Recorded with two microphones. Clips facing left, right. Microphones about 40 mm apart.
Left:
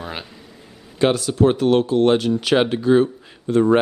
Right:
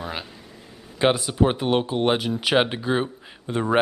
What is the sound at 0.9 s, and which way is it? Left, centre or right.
Speech, centre.